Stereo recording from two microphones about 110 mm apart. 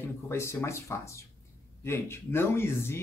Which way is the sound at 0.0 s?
25° left (ahead or behind).